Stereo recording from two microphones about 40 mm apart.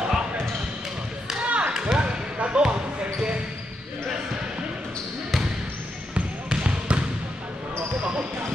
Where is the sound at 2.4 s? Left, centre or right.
Right.